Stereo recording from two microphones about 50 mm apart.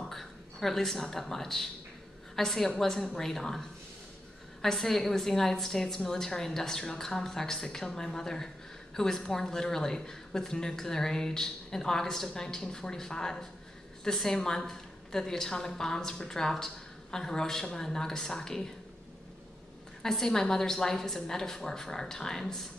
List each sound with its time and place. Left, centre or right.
0.1 s a woman's voice: centre
20.0 s a woman's voice: centre